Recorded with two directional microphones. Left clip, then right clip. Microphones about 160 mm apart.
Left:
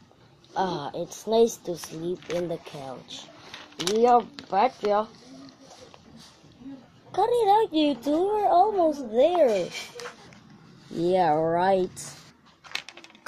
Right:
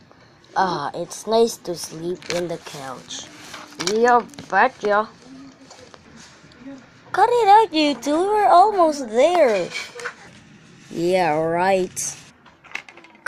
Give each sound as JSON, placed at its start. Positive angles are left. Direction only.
{"t": 0.6, "sound": "speech", "side_deg": -30}
{"t": 7.1, "sound": "speech", "side_deg": -25}
{"t": 11.0, "sound": "speech", "side_deg": -25}